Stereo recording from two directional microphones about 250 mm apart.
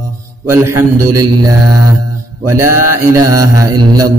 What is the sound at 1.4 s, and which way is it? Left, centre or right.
Speech, centre.